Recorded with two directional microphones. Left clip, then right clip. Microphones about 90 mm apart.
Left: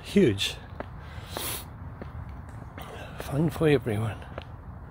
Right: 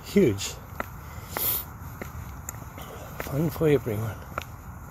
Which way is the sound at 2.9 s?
20° left (ahead or behind).